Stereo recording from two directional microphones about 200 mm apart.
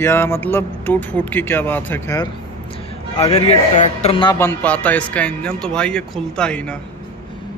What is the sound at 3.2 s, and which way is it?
Speech, 30° left (ahead or behind).